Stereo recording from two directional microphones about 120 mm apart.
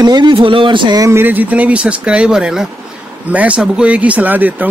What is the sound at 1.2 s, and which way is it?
Speech, 15° right (ahead or behind).